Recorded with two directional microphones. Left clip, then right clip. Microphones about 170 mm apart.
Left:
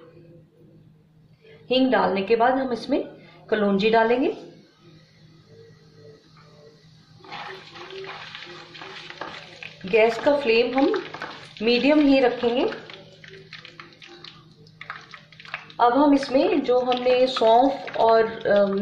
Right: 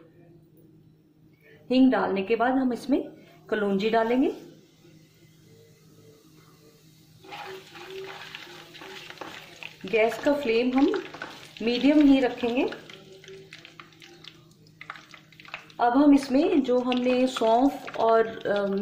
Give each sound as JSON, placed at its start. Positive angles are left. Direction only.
{"t": 1.7, "sound": "a woman's voice", "side_deg": -35}
{"t": 9.8, "sound": "speech", "side_deg": -25}
{"t": 15.7, "sound": "a woman's voice", "side_deg": -40}
{"t": 17.3, "sound": "speech", "side_deg": -25}
{"t": 18.4, "sound": "music", "side_deg": -40}